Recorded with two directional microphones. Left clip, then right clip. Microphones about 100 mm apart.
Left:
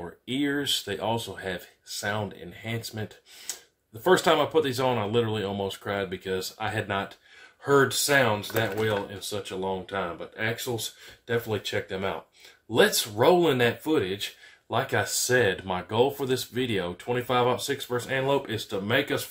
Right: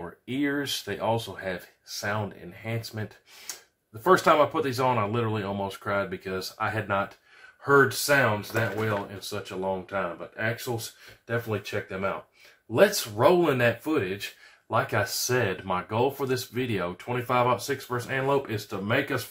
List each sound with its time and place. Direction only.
0.0 s speech: 15° left (ahead or behind)
9.6 s speech: 20° left (ahead or behind)
13.3 s speech: 25° left (ahead or behind)